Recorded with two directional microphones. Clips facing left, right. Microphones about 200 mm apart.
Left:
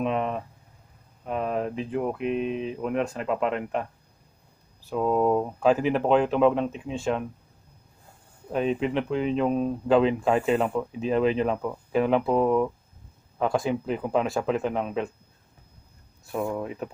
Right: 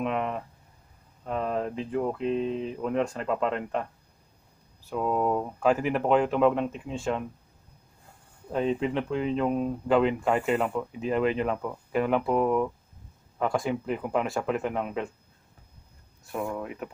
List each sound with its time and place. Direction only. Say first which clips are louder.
0.0 s speech: left 2 dB; 20° left (ahead or behind)
4.8 s speech: left 4 dB; 15° left (ahead or behind)
8.5 s speech: left 1 dB; 10° left (ahead or behind)
10.6 s speech: left 2 dB; 5° left (ahead or behind)
11.0 s speech: left 3 dB; 20° left (ahead or behind)
11.6 s speech: left 3 dB; 10° left (ahead or behind)
13.4 s speech: left 2 dB; 10° left (ahead or behind)
16.3 s speech: left 3 dB; 5° left (ahead or behind)